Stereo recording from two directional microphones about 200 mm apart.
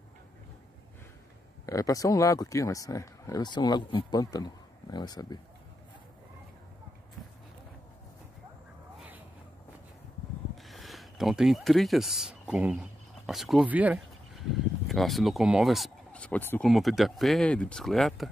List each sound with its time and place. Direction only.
1.7 s speech: 15° left (ahead or behind)
10.5 s speech: centre (ahead or behind)